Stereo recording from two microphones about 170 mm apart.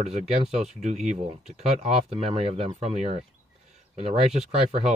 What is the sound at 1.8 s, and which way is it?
Speech, 35° right (ahead or behind).